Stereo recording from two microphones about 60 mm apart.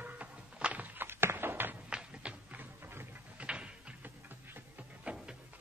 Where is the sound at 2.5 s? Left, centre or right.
Right.